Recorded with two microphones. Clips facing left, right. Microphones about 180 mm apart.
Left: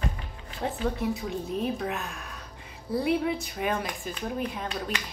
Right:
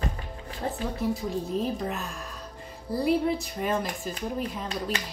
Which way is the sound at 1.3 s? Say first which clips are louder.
Right 2 dB; 35° right (ahead or behind).